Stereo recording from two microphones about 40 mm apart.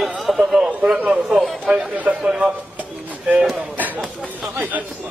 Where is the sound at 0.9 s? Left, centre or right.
Right.